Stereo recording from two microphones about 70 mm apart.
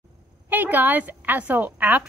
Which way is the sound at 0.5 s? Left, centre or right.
Right.